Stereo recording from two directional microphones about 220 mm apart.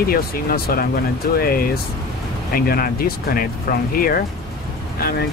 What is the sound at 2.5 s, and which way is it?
Speech, 40° left (ahead or behind).